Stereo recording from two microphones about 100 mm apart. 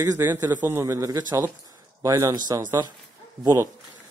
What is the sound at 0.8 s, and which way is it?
Speech, 30° right (ahead or behind).